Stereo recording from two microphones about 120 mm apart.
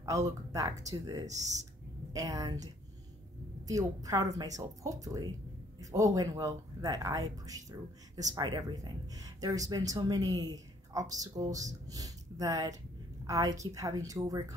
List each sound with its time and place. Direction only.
0.0 s speech: 25° right (ahead or behind)
1.2 s speech: 75° right (ahead or behind)
2.1 s speech: 30° right (ahead or behind)